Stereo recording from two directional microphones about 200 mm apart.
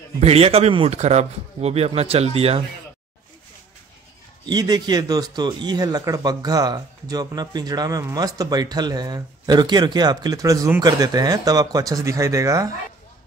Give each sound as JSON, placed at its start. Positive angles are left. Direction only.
{"t": 0.2, "sound": "speech", "side_deg": -30}
{"t": 4.5, "sound": "speech", "side_deg": -20}